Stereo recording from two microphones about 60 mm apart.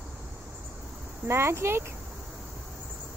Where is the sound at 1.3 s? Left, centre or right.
Right.